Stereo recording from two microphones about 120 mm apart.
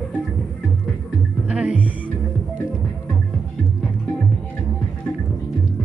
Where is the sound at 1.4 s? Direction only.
10° right (ahead or behind).